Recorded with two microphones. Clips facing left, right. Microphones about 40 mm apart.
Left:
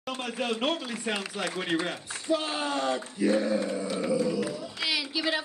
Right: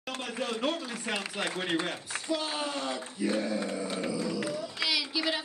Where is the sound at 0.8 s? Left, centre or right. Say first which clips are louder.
Left 3 dB; left.